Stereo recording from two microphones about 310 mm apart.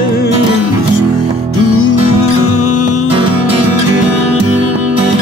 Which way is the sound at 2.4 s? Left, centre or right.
Left.